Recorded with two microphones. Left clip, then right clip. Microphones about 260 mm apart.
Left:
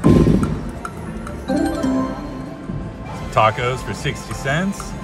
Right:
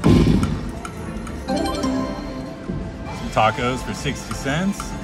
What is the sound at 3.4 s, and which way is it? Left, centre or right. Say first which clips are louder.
Speech: left 2 dB; left.